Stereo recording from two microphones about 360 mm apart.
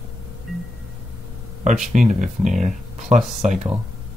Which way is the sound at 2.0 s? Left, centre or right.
Centre.